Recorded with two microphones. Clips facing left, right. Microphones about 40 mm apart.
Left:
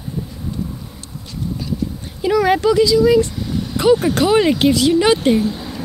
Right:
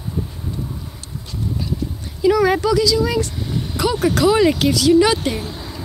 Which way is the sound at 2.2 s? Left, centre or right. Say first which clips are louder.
Even; left.